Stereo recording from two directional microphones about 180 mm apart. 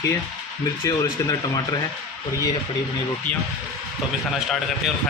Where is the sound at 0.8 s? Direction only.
20° left (ahead or behind).